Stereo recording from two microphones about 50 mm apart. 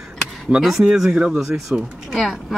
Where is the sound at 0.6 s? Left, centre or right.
Centre.